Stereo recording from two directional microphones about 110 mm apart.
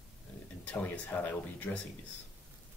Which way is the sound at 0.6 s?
10° left (ahead or behind).